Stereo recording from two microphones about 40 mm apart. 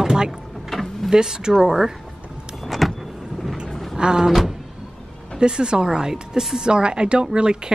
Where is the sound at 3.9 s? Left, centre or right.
Centre.